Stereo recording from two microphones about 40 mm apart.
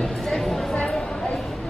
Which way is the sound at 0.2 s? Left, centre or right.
Centre.